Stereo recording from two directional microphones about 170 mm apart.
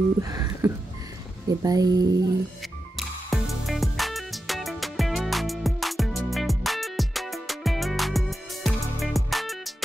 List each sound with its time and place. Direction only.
0.2 s a sound: 20° right (ahead or behind)
1.6 s speech: 20° right (ahead or behind)
3.0 s music: centre (ahead or behind)